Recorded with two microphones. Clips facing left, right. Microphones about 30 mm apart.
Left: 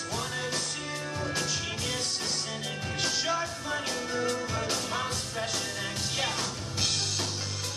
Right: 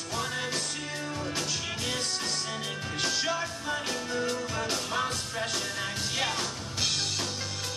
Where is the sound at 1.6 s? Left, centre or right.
Centre.